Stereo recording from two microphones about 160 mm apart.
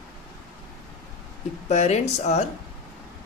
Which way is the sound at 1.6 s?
45° left (ahead or behind).